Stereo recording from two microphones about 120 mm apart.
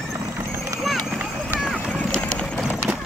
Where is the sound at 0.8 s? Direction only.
Centre (ahead or behind).